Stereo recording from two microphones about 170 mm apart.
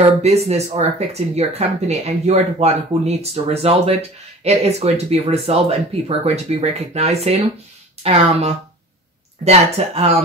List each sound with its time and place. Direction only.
0.2 s speech: 40° right (ahead or behind)